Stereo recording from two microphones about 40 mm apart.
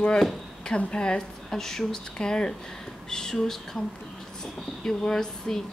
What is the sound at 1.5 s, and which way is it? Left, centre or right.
A woman's voice, centre.